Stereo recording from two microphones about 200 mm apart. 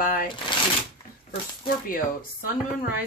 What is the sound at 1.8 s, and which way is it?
Speech, 45° left (ahead or behind).